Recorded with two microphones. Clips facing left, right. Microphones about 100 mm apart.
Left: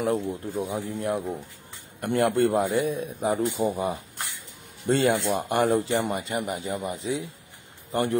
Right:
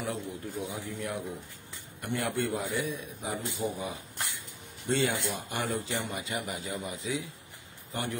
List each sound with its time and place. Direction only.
0.0 s speech: 45° left (ahead or behind)
0.7 s speech: 30° left (ahead or behind)
2.0 s speech: 50° left (ahead or behind)
4.8 s speech: 45° left (ahead or behind)